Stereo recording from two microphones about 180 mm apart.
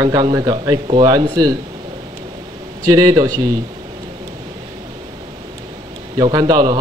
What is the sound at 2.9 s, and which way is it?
Speech, 20° right (ahead or behind).